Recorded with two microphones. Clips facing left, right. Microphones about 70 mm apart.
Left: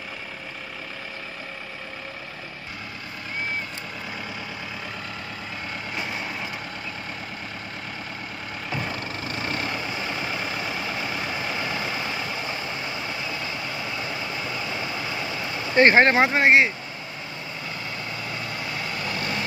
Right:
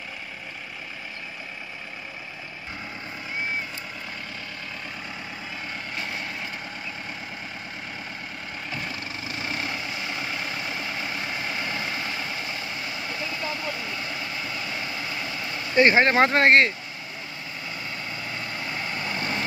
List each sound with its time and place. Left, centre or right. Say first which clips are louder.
8.7 s vehicle: left 5 dB; centre
9.8 s vehicle: left 3 dB; left
10.2 s vehicle: left 2 dB; centre
15.8 s speech: left 2 dB; left
16.2 s speech: even; centre
18.9 s vehicle: even; centre